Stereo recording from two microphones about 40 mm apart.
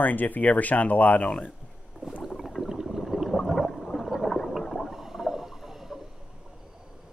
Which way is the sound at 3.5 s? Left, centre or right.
Centre.